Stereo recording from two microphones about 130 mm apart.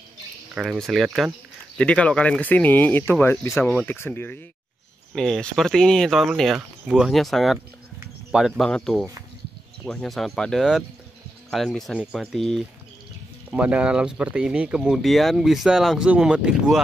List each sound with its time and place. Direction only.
0.6 s speech: centre (ahead or behind); by 4.4 s 15° left (ahead or behind)
5.1 s speech: 5° left (ahead or behind)